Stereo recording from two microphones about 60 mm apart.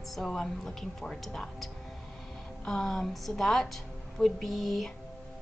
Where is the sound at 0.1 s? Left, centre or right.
Centre.